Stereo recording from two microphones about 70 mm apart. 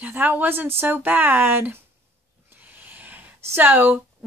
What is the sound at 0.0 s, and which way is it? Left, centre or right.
Speech, right.